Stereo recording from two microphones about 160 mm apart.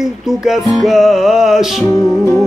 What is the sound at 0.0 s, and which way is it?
Music, centre (ahead or behind).